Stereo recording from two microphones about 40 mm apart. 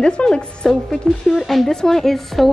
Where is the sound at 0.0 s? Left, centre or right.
Centre.